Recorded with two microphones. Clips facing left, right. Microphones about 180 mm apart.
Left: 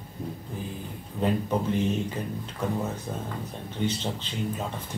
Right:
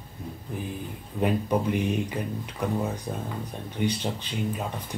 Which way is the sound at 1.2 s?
15° right (ahead or behind).